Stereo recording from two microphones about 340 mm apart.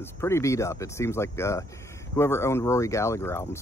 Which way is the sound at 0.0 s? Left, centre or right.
Centre.